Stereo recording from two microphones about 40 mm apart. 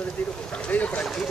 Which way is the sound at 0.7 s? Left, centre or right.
Left.